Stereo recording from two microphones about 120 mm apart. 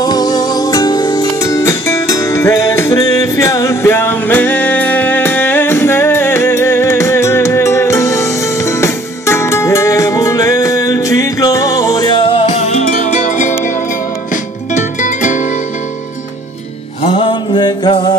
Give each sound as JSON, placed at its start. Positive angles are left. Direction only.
{"t": 0.0, "sound": "music", "side_deg": 35}
{"t": 17.1, "sound": "music", "side_deg": 40}